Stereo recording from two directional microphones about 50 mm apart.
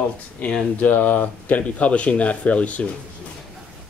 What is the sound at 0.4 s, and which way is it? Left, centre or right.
Speech, left.